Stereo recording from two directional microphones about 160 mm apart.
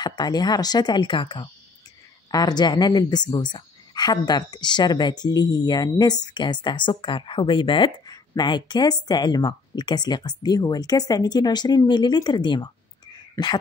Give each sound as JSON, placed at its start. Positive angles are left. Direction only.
{"t": 0.0, "sound": "speech", "side_deg": 25}